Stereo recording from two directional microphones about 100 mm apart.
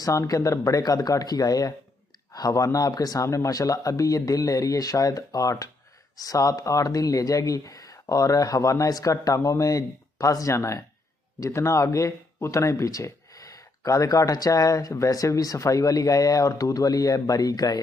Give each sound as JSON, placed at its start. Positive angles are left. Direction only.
{"t": 0.0, "sound": "speech", "side_deg": 35}